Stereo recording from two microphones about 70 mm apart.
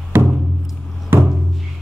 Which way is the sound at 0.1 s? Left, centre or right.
Right.